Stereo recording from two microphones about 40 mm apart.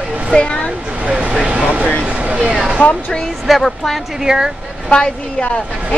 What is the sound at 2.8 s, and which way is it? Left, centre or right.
Speech, left.